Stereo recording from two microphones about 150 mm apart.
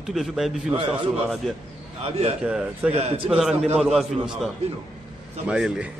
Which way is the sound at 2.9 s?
40° right (ahead or behind).